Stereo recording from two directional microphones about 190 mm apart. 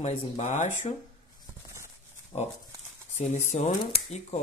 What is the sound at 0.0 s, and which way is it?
Speech, 35° left (ahead or behind).